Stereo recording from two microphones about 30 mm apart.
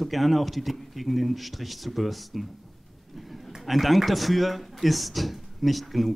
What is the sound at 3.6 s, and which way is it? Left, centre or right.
Speech, centre.